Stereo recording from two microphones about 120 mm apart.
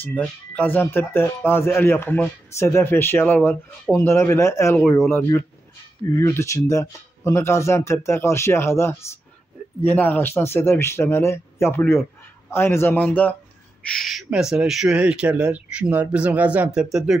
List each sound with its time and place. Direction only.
0.0 s speech: 10° left (ahead or behind)
6.1 s speech: 25° left (ahead or behind)
13.8 s speech: centre (ahead or behind)